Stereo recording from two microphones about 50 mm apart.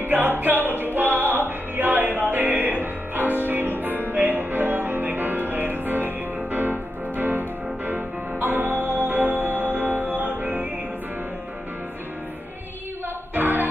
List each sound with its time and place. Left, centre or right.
0.0 s music: right
13.3 s music: right